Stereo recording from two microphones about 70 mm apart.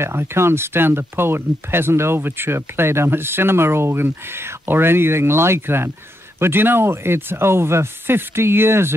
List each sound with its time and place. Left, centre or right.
0.0 s speech: right